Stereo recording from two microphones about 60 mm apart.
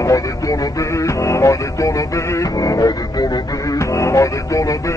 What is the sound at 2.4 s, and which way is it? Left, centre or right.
Music, left.